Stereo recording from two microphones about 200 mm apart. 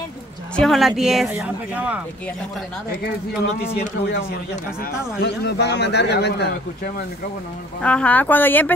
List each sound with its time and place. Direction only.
0.6 s speech: centre (ahead or behind)
4.0 s a man's voice: 50° left (ahead or behind)
7.8 s speech: 5° left (ahead or behind)